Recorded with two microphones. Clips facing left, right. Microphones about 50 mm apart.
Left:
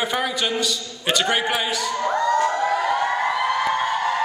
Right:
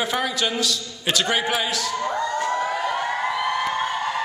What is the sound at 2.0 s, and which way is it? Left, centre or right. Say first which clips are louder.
Crowd: left 4 dB; centre.